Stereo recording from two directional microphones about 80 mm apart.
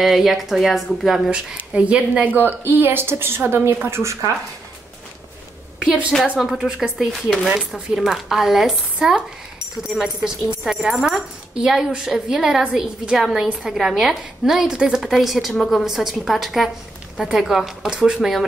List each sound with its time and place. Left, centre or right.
0.0 s a woman's voice: centre
1.7 s speech: centre
2.3 s speech: right
5.8 s a woman's voice: centre